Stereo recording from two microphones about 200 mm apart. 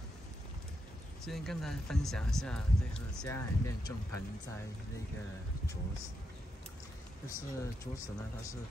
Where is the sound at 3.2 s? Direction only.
15° left (ahead or behind).